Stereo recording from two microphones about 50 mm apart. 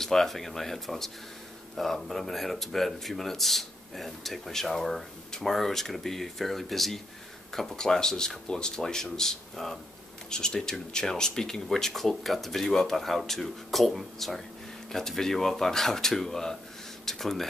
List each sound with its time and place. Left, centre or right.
0.0 s speech: centre